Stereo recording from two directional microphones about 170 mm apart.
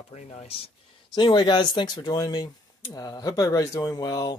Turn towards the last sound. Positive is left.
turn(degrees=20)  # may be behind; listen again after turning